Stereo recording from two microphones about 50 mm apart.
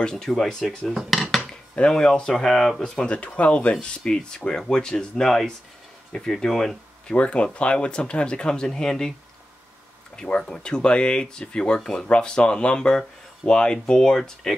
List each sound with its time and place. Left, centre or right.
0.0 s speech: centre
0.7 s cutlery: centre
1.5 s speech: centre
2.8 s speech: left
7.2 s speech: left
10.1 s speech: centre